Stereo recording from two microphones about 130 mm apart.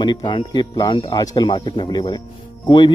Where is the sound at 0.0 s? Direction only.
35° left (ahead or behind).